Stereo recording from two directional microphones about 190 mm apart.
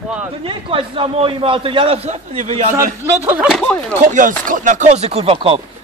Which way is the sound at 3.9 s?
45° right (ahead or behind).